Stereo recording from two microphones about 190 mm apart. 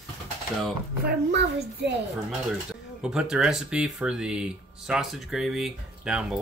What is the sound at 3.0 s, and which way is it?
Speech, 5° right (ahead or behind).